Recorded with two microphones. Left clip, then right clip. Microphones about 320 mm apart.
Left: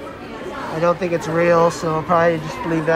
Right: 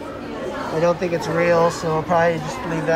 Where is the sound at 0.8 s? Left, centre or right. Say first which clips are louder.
Left 2 dB; centre.